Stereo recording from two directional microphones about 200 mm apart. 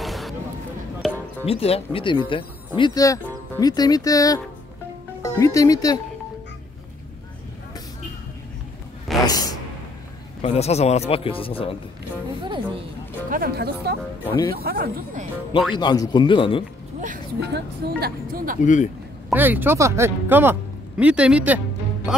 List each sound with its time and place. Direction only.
0.0 s a sound: centre (ahead or behind)
1.4 s speech: 30° left (ahead or behind)
9.2 s a sound: 20° left (ahead or behind)
10.4 s speech: 30° left (ahead or behind)
12.4 s speech: 25° right (ahead or behind)
13.3 s speech: 50° right (ahead or behind)
14.2 s speech: 20° left (ahead or behind)
14.5 s speech: 50° right (ahead or behind)
15.7 s speech: 20° left (ahead or behind)
17.4 s speech: 55° right (ahead or behind)
18.6 s speech: 40° left (ahead or behind)
19.3 s speech: 10° right (ahead or behind)